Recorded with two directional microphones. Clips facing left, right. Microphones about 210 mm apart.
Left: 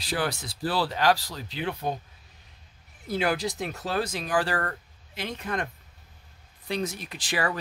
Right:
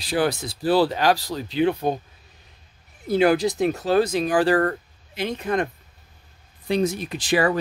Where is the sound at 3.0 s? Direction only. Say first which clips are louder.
Right 9 dB; 20° right (ahead or behind).